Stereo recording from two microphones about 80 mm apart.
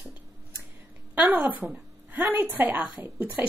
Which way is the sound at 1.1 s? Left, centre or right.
Centre.